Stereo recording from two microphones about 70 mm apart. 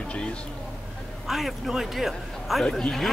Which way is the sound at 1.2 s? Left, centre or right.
Centre.